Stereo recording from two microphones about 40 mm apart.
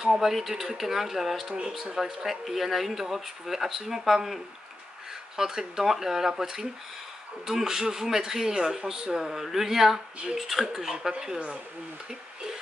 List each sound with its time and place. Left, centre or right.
0.0 s speech: centre